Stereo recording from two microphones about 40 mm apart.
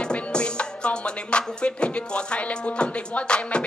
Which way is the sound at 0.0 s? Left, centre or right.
Left.